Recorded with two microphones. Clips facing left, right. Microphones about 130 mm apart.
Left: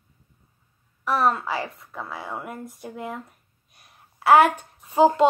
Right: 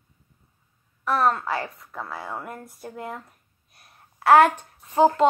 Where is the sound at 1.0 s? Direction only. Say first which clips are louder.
Even; centre (ahead or behind).